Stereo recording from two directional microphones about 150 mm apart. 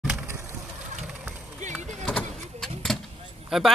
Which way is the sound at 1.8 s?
55° right (ahead or behind).